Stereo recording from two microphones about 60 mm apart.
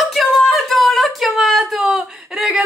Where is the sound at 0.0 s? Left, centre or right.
Centre.